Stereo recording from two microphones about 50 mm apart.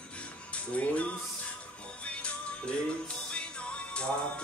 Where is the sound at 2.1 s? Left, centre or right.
Left.